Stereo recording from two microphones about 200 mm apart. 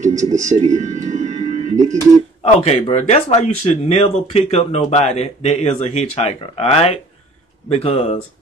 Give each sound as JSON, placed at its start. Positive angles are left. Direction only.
{"t": 0.0, "sound": "music", "side_deg": -40}
{"t": 2.6, "sound": "speech", "side_deg": 35}